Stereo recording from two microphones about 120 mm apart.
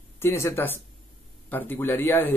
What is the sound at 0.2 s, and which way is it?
A man's voice, 20° left (ahead or behind).